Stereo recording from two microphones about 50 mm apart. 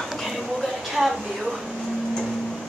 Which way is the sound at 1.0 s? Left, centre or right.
Centre.